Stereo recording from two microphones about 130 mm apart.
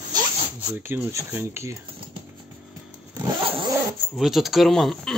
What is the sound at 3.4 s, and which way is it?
Zipper, 45° right (ahead or behind).